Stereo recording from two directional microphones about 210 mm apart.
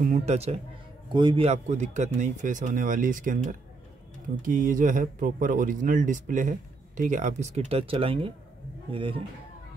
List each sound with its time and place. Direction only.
0.1 s a man's voice: 30° right (ahead or behind)